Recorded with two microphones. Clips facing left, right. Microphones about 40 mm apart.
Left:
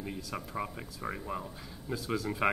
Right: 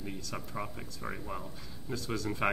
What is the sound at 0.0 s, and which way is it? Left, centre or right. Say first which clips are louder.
Speech: left 2 dB; centre.